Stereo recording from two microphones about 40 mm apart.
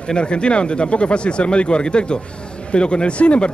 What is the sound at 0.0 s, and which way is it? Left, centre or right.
A man's voice, left.